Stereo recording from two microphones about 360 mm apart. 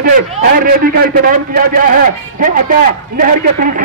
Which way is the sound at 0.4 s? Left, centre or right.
Right.